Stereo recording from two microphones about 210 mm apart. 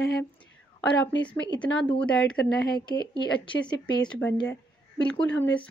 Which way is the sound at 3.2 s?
20° left (ahead or behind).